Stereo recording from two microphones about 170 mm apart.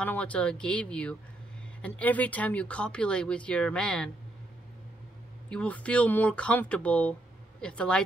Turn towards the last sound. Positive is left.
turn(degrees=5)  # may be behind; listen again after turning